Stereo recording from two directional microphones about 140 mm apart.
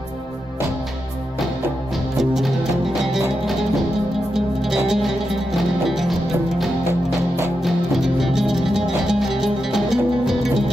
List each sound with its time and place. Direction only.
2.1 s music: centre (ahead or behind)
6.9 s music: 15° right (ahead or behind)
7.6 s music: centre (ahead or behind)